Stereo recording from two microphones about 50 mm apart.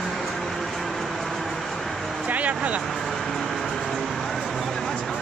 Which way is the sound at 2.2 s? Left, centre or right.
Right.